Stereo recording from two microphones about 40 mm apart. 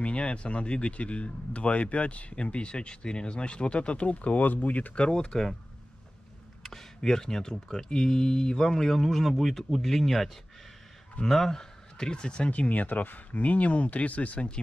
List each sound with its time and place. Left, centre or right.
0.0 s speech: left
4.4 s speech: left
4.9 s speech: left
6.6 s speech: centre
12.4 s speech: left